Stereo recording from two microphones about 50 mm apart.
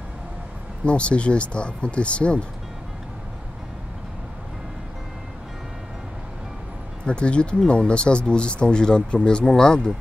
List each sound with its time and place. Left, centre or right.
0.8 s speech: left
7.1 s speech: left